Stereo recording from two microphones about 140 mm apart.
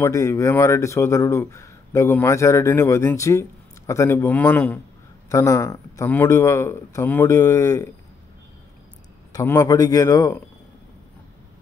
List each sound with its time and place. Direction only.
0.0 s speech: 20° left (ahead or behind)
5.3 s speech: 25° left (ahead or behind)
9.3 s speech: 20° left (ahead or behind)